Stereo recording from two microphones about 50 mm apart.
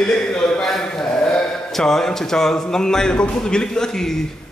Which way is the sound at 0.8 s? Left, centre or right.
Centre.